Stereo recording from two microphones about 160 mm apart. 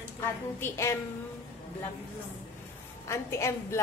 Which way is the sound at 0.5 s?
15° left (ahead or behind).